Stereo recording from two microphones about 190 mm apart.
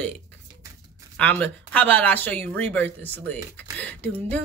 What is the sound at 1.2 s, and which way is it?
Speech, 5° left (ahead or behind).